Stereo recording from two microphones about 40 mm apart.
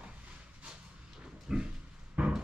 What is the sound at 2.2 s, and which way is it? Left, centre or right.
Thunder, right.